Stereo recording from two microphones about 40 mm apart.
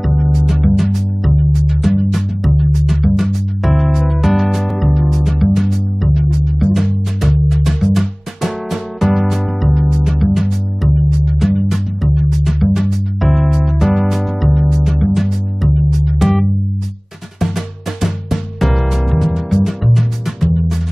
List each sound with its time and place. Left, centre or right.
0.0 s music: centre